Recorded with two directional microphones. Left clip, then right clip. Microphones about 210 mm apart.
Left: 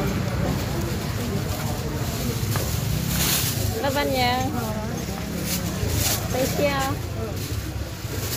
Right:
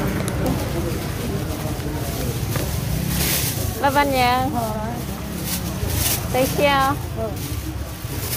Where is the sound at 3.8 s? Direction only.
25° right (ahead or behind).